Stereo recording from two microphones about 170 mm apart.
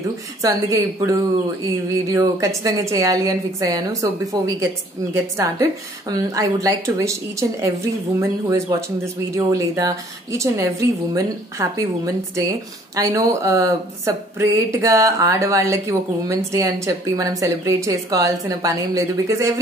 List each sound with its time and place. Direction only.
0.4 s speech: 20° right (ahead or behind)
12.9 s speech: 20° right (ahead or behind)